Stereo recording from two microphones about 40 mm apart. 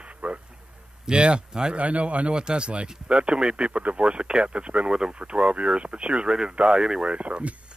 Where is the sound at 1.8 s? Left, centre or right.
Right.